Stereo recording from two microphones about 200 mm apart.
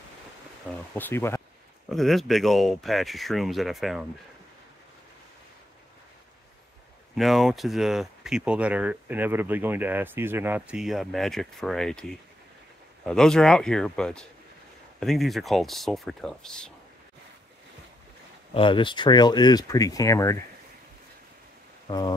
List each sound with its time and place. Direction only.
0.7 s speech: 10° left (ahead or behind)
1.9 s speech: centre (ahead or behind)
7.2 s speech: centre (ahead or behind)
18.5 s speech: 25° left (ahead or behind)